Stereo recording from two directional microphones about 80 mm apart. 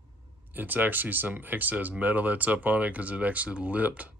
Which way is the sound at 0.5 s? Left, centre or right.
Right.